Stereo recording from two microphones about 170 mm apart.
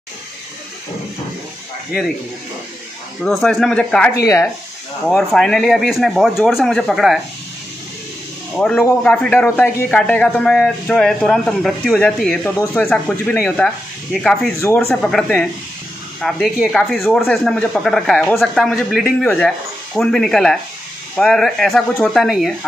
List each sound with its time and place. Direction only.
1.9 s speech: centre (ahead or behind)
3.3 s speech: centre (ahead or behind)
4.2 s speech: 20° left (ahead or behind)
5.0 s speech: centre (ahead or behind)
8.5 s a man's voice: 5° left (ahead or behind)